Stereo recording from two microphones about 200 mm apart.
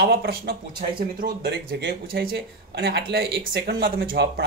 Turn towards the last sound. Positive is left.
turn(degrees=-55)  # may be behind; listen again after turning